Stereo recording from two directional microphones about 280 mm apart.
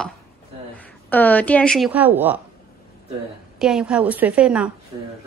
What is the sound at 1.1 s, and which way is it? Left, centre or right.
Speech, centre.